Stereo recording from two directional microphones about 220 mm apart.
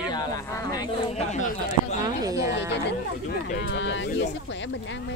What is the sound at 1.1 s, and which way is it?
Speech, 30° left (ahead or behind).